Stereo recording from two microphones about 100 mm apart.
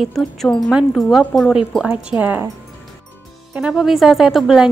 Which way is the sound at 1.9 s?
15° right (ahead or behind).